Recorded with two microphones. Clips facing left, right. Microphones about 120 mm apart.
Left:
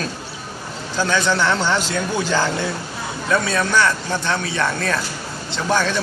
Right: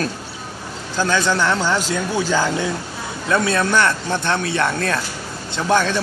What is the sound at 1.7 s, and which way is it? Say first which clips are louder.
Speech: right 1 dB; 40° right (ahead or behind).